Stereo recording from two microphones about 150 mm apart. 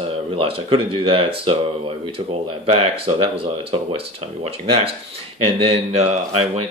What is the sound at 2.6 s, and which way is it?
Speech, 40° right (ahead or behind).